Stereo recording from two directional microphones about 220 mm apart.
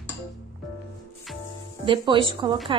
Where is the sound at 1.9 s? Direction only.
20° right (ahead or behind).